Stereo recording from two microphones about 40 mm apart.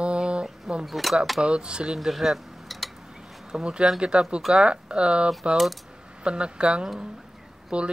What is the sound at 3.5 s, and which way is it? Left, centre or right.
Speech, centre.